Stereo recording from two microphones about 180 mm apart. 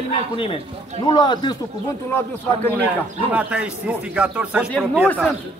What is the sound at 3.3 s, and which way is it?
A man's voice, 5° right (ahead or behind).